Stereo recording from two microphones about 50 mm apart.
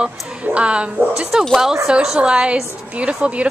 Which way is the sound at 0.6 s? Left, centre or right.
Right.